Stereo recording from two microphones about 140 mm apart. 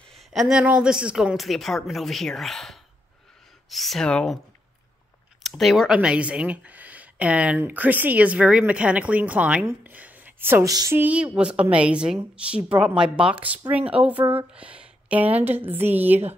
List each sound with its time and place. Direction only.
0.1 s a woman's voice: centre (ahead or behind)
5.4 s speech: centre (ahead or behind); by 10.7 s 15° right (ahead or behind)
10.7 s a woman's voice: 25° right (ahead or behind)
11.0 s speech: 10° right (ahead or behind)